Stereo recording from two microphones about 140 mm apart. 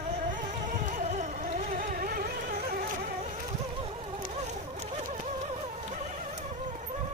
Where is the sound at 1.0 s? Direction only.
60° right (ahead or behind); by 2.9 s 90° right.